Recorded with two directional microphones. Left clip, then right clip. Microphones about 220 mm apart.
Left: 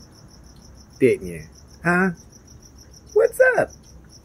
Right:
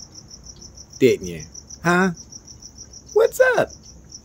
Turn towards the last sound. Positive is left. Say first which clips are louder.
# even
turn(degrees=-20)  # may be behind; listen again after turning